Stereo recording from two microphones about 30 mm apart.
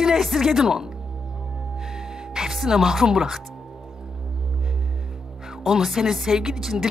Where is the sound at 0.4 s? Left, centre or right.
Centre.